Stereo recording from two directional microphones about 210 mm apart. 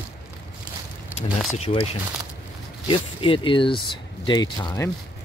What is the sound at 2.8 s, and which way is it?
Speech, 25° left (ahead or behind).